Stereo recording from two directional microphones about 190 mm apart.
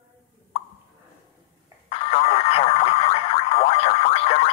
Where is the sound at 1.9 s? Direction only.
30° left (ahead or behind).